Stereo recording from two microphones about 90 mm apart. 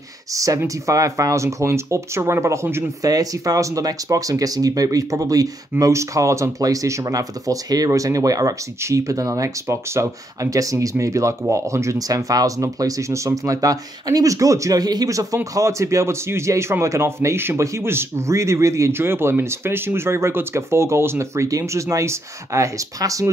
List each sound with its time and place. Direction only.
0.3 s speech: 40° right (ahead or behind)
3.0 s speech: 45° right (ahead or behind)